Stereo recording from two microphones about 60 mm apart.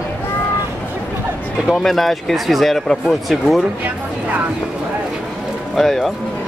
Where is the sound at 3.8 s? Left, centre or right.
Right.